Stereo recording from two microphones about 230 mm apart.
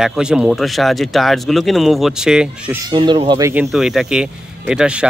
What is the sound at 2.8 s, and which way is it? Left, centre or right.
Speech, centre.